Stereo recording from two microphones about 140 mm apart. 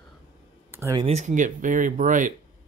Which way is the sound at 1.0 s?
55° right (ahead or behind).